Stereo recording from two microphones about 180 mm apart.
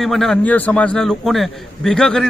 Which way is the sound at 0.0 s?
Centre (ahead or behind).